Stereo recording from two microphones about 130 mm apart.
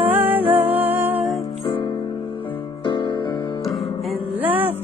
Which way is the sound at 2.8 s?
40° left (ahead or behind).